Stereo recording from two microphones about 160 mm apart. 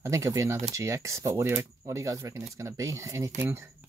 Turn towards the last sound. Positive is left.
turn(degrees=-15)  # may be behind; listen again after turning